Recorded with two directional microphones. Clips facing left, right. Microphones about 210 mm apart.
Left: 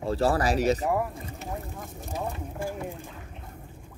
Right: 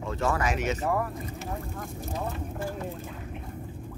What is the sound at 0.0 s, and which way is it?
Speech, 35° left (ahead or behind).